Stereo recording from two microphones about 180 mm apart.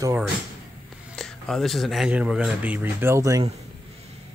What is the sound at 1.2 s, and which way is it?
Speech, 5° left (ahead or behind).